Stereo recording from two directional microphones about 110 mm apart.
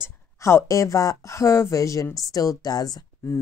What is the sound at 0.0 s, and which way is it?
Speech, 25° left (ahead or behind).